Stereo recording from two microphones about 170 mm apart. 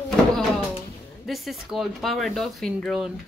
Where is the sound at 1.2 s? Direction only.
Centre (ahead or behind).